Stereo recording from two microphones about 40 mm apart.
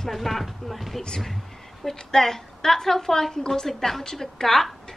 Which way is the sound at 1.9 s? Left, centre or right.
Centre.